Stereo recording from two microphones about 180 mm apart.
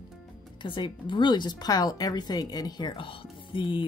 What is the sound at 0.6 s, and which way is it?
Speech, 25° left (ahead or behind).